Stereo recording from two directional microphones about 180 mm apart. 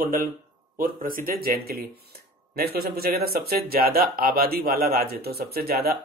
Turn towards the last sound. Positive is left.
turn(degrees=-60)  # may be behind; listen again after turning